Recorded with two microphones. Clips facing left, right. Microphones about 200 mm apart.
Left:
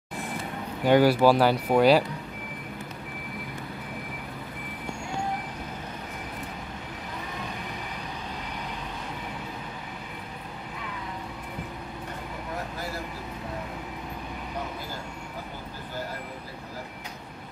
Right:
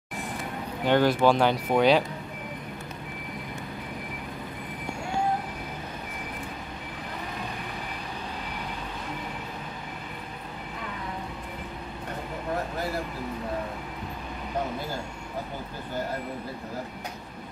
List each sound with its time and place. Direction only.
0.8 s speech: 10° left (ahead or behind)